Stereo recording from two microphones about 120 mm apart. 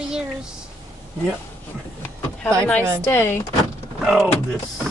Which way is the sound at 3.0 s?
20° left (ahead or behind).